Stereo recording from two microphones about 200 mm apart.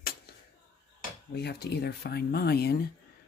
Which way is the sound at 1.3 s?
55° left (ahead or behind).